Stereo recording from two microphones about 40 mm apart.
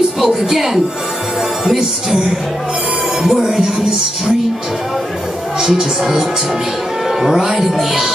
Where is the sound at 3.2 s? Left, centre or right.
Centre.